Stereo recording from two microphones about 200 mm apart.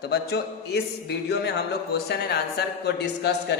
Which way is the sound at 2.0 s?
55° left (ahead or behind).